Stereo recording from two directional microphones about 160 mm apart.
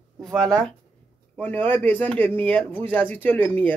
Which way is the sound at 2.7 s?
35° right (ahead or behind).